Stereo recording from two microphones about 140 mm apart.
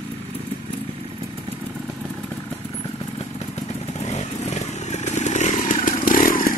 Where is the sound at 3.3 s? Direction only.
55° left (ahead or behind).